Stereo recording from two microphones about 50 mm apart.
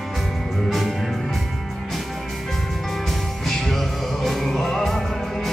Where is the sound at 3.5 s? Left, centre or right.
Centre.